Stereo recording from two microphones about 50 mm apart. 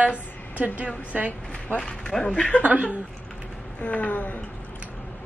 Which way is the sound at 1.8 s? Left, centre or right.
Centre.